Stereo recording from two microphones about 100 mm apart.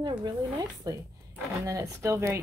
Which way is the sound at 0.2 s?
35° right (ahead or behind).